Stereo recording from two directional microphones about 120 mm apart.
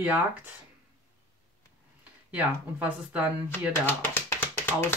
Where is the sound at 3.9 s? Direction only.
20° left (ahead or behind).